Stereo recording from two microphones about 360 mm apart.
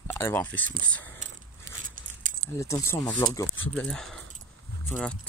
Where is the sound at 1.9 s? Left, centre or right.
Right.